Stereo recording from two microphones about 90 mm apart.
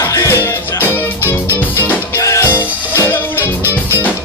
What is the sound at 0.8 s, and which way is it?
Music, 20° left (ahead or behind).